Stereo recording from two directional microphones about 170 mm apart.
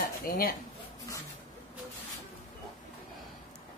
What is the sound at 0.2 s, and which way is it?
Speech, 55° left (ahead or behind).